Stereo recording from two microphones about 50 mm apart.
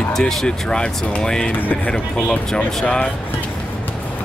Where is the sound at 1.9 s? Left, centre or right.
Centre.